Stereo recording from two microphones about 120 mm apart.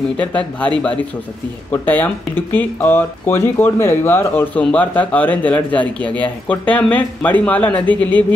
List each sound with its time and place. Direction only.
0.2 s speech: 10° left (ahead or behind)